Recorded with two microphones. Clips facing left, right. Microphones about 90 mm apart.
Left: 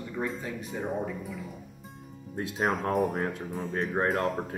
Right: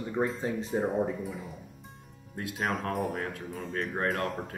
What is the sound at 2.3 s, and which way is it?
Speech, 25° left (ahead or behind).